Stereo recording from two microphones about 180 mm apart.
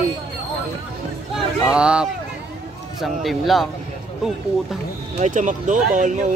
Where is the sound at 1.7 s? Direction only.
5° right (ahead or behind).